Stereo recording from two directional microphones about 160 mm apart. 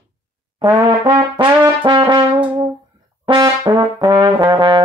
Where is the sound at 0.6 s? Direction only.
30° right (ahead or behind).